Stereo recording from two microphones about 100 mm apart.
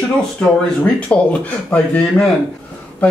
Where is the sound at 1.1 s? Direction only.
15° left (ahead or behind).